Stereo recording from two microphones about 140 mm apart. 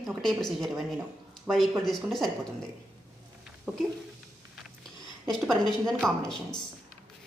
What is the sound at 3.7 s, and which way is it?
Speech, centre (ahead or behind).